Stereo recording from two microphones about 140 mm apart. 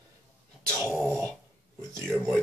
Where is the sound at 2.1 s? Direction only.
5° right (ahead or behind).